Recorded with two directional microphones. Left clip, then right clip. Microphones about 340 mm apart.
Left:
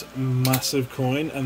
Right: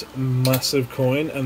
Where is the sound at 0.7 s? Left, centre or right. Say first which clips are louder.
Right 4 dB; centre.